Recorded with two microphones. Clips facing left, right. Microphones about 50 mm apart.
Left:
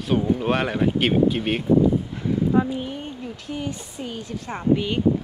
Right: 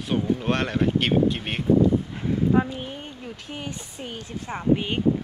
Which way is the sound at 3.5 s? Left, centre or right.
Right.